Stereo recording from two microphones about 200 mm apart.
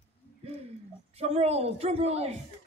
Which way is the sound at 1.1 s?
30° right (ahead or behind).